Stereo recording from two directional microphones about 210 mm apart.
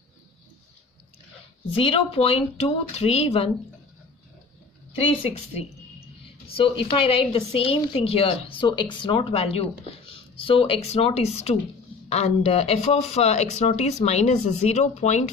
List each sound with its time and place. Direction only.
1.8 s speech: 25° left (ahead or behind)
5.1 s a woman's voice: 30° left (ahead or behind)